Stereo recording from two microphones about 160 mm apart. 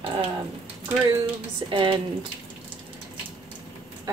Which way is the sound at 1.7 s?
30° right (ahead or behind).